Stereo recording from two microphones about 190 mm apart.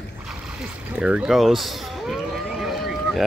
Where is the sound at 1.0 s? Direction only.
5° right (ahead or behind).